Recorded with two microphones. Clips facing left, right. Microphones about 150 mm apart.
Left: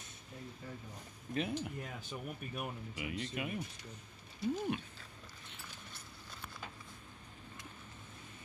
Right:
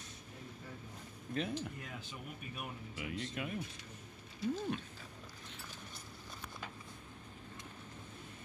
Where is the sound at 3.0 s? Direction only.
5° left (ahead or behind).